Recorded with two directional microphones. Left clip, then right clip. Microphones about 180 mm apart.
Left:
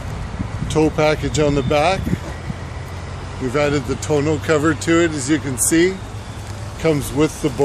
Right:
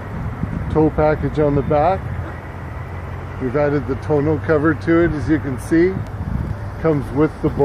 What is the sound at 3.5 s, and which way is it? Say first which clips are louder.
Speech: even; 5° right (ahead or behind).